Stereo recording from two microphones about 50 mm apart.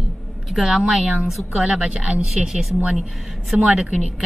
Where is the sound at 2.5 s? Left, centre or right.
Centre.